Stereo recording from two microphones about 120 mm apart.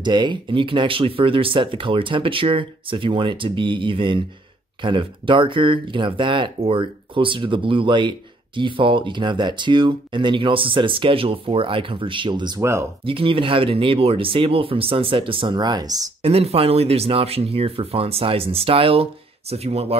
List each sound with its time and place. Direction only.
0.0 s speech: 40° right (ahead or behind)
12.5 s speech: 20° right (ahead or behind)
13.0 s speech: 50° right (ahead or behind); by 16.1 s 30° right (ahead or behind)
16.2 s speech: 55° right (ahead or behind)